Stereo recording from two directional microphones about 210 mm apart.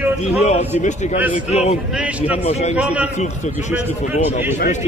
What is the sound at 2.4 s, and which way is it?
Speech, 30° left (ahead or behind).